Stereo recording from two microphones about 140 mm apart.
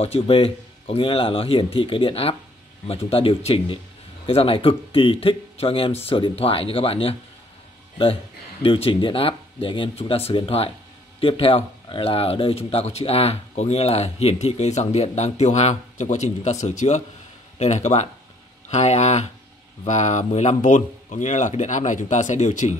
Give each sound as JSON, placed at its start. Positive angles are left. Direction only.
{"t": 0.0, "sound": "speech", "side_deg": 45}
{"t": 8.6, "sound": "speech", "side_deg": 40}